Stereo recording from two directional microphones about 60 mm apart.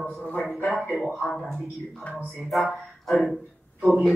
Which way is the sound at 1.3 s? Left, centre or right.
Centre.